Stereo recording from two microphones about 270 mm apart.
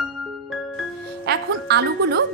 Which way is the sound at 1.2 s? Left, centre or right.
Right.